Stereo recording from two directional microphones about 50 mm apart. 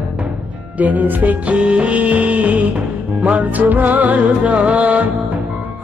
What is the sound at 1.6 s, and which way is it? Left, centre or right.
Music, right.